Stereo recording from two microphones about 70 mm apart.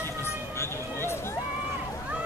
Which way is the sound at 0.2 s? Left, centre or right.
Left.